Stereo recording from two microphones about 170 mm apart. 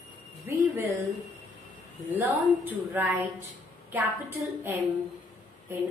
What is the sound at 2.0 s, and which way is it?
A woman's voice, 10° right (ahead or behind).